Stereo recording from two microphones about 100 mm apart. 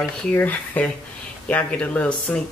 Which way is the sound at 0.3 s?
15° left (ahead or behind).